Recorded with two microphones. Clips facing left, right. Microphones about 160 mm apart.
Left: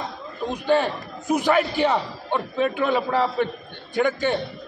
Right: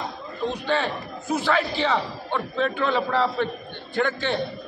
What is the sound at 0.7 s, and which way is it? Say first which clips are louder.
A man's voice: left 8 dB; 15° left (ahead or behind).